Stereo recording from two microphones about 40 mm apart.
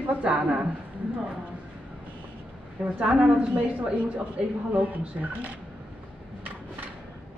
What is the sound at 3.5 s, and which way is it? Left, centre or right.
A woman's voice, right.